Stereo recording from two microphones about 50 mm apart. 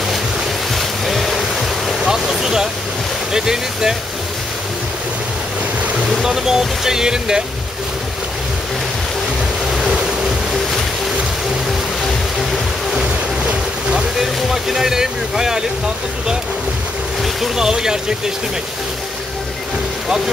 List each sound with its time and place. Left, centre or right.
0.7 s boat: centre
2.0 s a sound: centre
3.3 s speech: centre
6.2 s speech: centre
9.7 s waves: centre
12.9 s boat: centre
14.2 s speech: centre
17.2 s speech: centre